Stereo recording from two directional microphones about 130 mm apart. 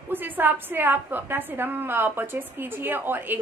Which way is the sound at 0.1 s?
15° right (ahead or behind).